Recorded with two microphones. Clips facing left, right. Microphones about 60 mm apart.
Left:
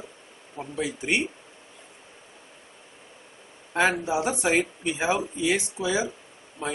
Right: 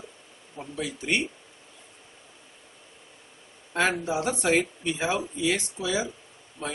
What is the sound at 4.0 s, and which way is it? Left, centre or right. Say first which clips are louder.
Speech: left 1 dB; centre.